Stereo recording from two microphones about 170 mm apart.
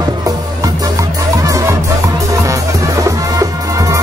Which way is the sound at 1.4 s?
20° right (ahead or behind).